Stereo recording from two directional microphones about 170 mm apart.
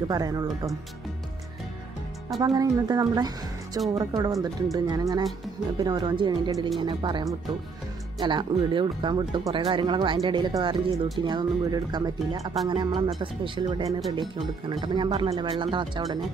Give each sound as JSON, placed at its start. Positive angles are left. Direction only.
{"t": 0.1, "sound": "speech", "side_deg": -20}
{"t": 2.4, "sound": "speech", "side_deg": -20}
{"t": 15.0, "sound": "speech", "side_deg": -35}